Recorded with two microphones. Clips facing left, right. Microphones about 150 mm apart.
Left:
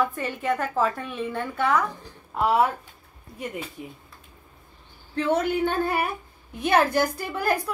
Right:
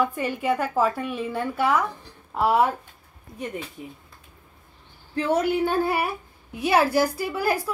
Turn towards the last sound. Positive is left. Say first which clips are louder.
# right 1 dB
turn(degrees=-10)  # may be behind; listen again after turning